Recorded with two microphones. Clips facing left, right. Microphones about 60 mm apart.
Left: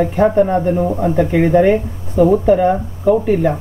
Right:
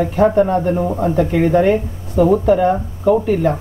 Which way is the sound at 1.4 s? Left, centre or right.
Centre.